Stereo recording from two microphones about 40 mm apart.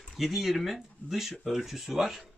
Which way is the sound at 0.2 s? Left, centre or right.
Centre.